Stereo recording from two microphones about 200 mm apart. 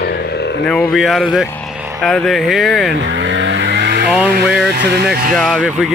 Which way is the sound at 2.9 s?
65° right (ahead or behind).